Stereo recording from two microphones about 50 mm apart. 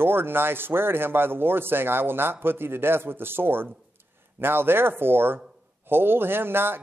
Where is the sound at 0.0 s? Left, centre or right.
Right.